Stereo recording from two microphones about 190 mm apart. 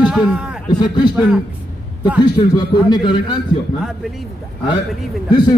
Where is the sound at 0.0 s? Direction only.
5° right (ahead or behind).